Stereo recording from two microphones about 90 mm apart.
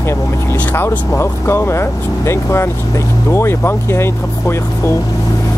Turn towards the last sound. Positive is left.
turn(degrees=25)  # may be behind; listen again after turning